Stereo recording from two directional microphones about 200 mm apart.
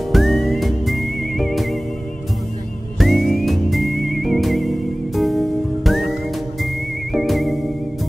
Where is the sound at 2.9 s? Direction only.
Centre (ahead or behind).